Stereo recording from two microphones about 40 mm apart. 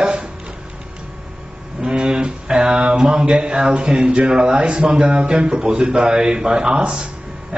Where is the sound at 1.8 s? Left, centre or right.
Right.